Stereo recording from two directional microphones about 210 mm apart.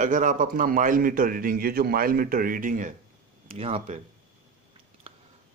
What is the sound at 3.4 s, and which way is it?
Speech, 30° right (ahead or behind).